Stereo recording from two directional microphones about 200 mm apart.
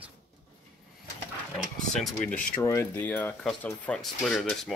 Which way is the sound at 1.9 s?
5° left (ahead or behind).